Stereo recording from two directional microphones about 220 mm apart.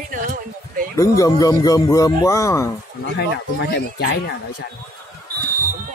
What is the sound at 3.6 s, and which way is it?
Speech, 45° left (ahead or behind).